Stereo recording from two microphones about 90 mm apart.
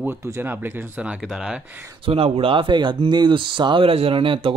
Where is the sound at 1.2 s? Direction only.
5° right (ahead or behind).